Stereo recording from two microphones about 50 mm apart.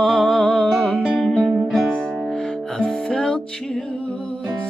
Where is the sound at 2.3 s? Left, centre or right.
Centre.